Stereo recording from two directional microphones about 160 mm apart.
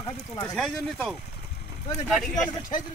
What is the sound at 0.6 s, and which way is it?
Speech, centre (ahead or behind).